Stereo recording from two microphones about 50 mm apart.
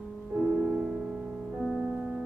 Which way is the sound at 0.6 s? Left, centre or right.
Centre.